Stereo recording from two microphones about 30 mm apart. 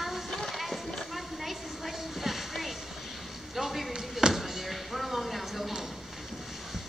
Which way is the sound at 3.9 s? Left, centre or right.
Centre.